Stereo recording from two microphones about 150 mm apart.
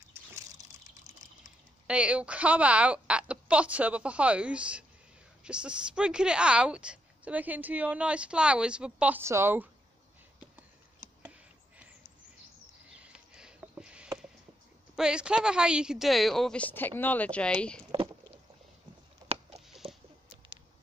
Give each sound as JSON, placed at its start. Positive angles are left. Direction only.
{"t": 0.1, "sound": "water", "side_deg": -20}
{"t": 1.9, "sound": "a woman's voice", "side_deg": -5}
{"t": 12.9, "sound": "a sound", "side_deg": -5}
{"t": 15.0, "sound": "a woman's voice", "side_deg": -5}
{"t": 19.2, "sound": "a sound", "side_deg": -45}
{"t": 19.8, "sound": "rodents", "side_deg": -40}